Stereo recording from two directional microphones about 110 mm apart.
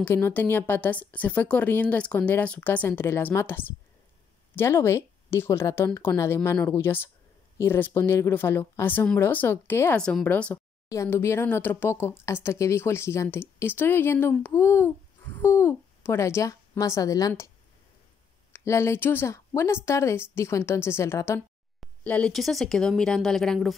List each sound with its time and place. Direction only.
0.0 s speech: 20° left (ahead or behind)
9.9 s speech: 10° left (ahead or behind); by 17.3 s 30° left (ahead or behind)
18.5 s speech: 25° left (ahead or behind)
22.0 s speech: 10° left (ahead or behind)
22.3 s a woman's voice: centre (ahead or behind)